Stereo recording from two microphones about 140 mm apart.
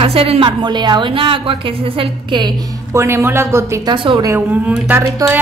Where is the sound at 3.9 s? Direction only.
35° right (ahead or behind).